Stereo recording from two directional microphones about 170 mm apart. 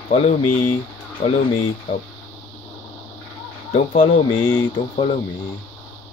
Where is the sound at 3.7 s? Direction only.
35° left (ahead or behind).